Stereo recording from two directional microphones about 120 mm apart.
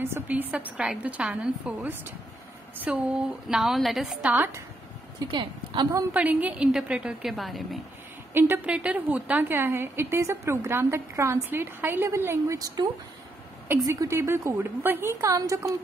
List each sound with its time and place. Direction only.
0.0 s a woman's voice: 15° right (ahead or behind)
5.3 s a woman's voice: 40° right (ahead or behind)
6.1 s a woman's voice: 10° right (ahead or behind)
8.3 s a woman's voice: 20° right (ahead or behind)
12.5 s a woman's voice: 30° right (ahead or behind)